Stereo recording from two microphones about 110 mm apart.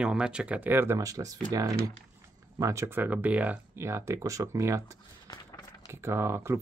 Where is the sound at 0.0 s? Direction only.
10° right (ahead or behind); by 1.4 s 30° right (ahead or behind).